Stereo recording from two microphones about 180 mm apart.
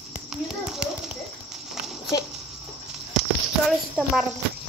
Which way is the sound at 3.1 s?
Centre (ahead or behind).